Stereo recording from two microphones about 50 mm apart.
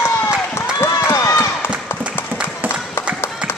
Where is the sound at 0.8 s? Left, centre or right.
Left.